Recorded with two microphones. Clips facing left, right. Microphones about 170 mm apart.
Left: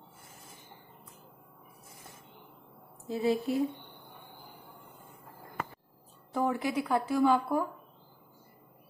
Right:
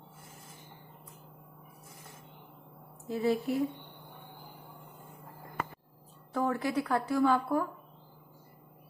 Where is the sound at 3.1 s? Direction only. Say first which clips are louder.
Left 1 dB; 25° left (ahead or behind).